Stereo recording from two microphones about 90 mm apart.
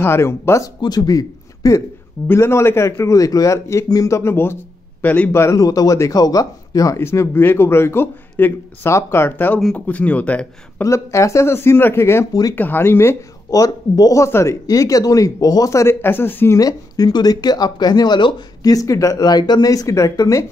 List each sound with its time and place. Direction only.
0.0 s speech: 30° left (ahead or behind)
0.7 s speech: 50° left (ahead or behind)
2.2 s speech: 30° left (ahead or behind)
5.0 s speech: 15° left (ahead or behind)
5.3 s speech: 30° left (ahead or behind)
7.0 s speech: 25° left (ahead or behind)
10.8 s speech: 35° left (ahead or behind)
13.5 s speech: 45° left (ahead or behind); by 16.5 s 25° left (ahead or behind)
16.5 s speech: 45° left (ahead or behind)